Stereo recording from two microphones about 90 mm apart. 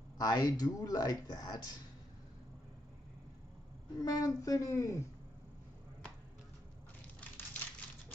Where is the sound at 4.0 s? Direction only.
40° left (ahead or behind).